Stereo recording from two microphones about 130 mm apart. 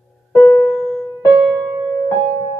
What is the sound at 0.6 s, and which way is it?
Music, centre (ahead or behind).